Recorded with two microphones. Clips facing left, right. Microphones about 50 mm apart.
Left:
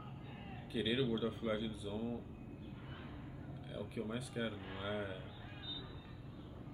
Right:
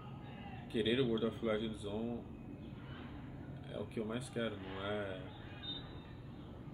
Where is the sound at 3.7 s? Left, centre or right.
Centre.